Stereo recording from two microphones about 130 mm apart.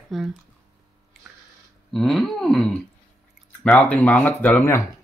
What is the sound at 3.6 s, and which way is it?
Speech, 10° left (ahead or behind).